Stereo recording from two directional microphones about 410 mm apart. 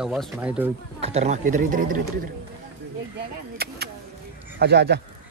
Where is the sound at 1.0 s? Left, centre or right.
Centre.